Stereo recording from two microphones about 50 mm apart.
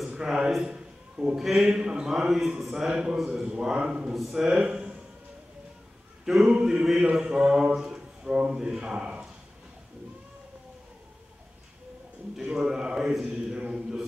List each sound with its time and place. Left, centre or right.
0.1 s a man's voice: centre
0.6 s a sound: centre
1.3 s speech: centre
4.6 s speech: right
6.2 s speech: centre
12.4 s speech: centre